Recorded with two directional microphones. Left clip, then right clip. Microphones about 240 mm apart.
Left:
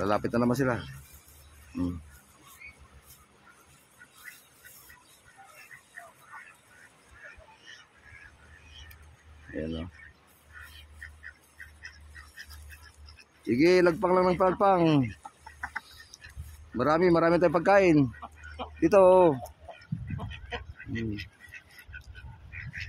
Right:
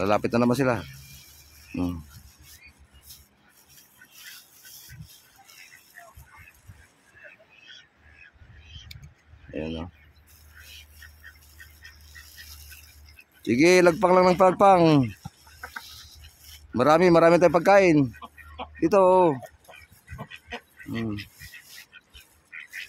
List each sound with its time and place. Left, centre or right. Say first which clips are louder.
0.0 s speech: right 4 dB; centre
13.4 s speech: right 4 dB; right
16.7 s speech: right 6 dB; right
20.2 s dog: right 1 dB; centre
21.9 s a sound: left 3 dB; centre
22.5 s duck: right 3 dB; centre